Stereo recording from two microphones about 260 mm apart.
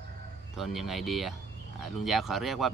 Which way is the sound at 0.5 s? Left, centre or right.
Centre.